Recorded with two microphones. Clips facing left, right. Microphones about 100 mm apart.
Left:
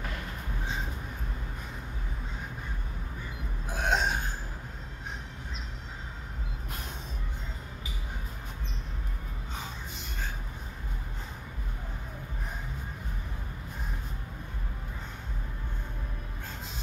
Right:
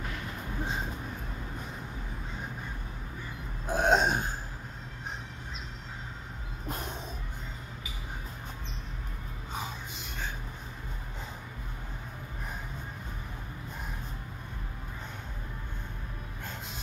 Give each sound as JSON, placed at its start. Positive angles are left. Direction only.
{"t": 3.7, "sound": "burping", "side_deg": -35}